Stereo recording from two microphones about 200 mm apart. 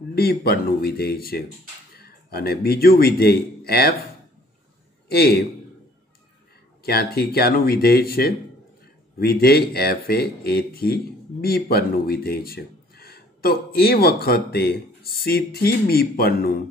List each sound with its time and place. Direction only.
0.1 s a man's voice: 50° left (ahead or behind)
5.0 s a man's voice: 50° left (ahead or behind)
6.8 s speech: 50° left (ahead or behind)